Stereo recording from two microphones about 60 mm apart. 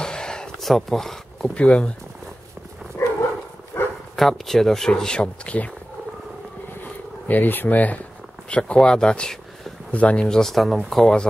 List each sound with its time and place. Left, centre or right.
0.0 s a sound: centre
0.7 s speech: centre
1.5 s speech: left
3.0 s dog: left
3.7 s bow-wow: left
4.2 s speech: centre
6.8 s a sound: left
8.5 s speech: centre